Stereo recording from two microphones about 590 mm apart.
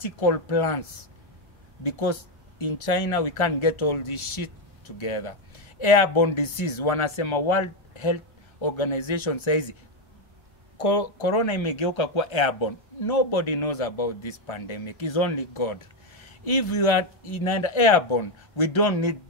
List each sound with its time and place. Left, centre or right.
0.0 s speech: left
1.8 s speech: left
10.8 s speech: left